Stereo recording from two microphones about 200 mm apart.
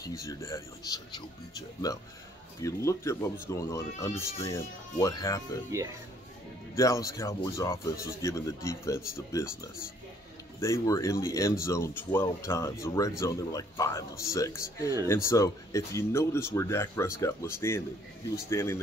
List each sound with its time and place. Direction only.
0.0 s speech: 15° left (ahead or behind)
5.7 s speech: 15° right (ahead or behind)
6.7 s speech: 15° left (ahead or behind)